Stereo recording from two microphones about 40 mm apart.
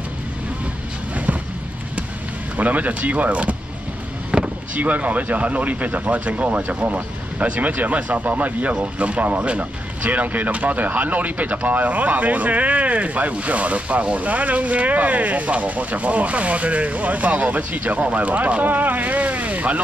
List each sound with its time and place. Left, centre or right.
1.1 s vehicle: right
2.5 s speech: right
4.3 s vehicle: right
4.7 s speech: right